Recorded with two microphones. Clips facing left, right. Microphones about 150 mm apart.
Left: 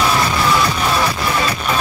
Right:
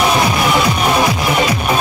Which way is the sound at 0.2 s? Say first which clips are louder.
Right 2 dB; 15° right (ahead or behind).